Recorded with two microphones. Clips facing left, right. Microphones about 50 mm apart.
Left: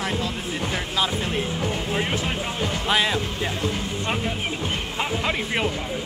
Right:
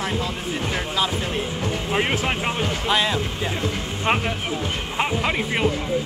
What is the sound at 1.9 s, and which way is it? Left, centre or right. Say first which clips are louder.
Speech: right 7 dB; right.